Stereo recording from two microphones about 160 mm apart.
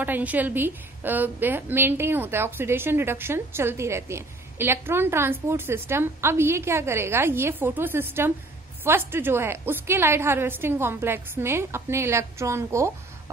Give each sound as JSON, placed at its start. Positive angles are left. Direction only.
{"t": 0.0, "sound": "a woman's voice", "side_deg": -10}